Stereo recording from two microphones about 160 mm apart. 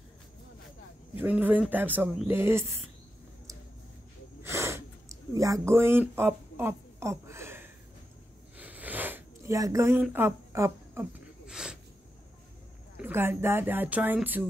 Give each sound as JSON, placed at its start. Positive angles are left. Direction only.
{"t": 1.1, "sound": "speech", "side_deg": -10}
{"t": 4.4, "sound": "snort", "side_deg": -15}
{"t": 5.3, "sound": "speech", "side_deg": -20}
{"t": 8.5, "sound": "a sound", "side_deg": -10}
{"t": 10.0, "sound": "speech", "side_deg": -15}
{"t": 11.4, "sound": "a sound", "side_deg": -5}
{"t": 13.0, "sound": "speech", "side_deg": -15}